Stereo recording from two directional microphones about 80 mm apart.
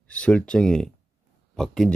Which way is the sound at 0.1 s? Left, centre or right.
Centre.